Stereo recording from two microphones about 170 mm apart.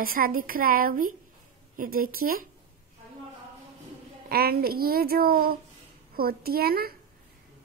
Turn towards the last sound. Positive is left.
turn(degrees=-65)  # may be behind; listen again after turning